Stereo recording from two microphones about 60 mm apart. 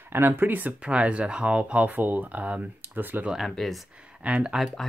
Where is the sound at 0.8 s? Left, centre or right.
Centre.